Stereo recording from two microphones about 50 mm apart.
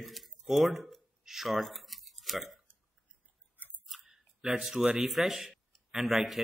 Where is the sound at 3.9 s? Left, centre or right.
Centre.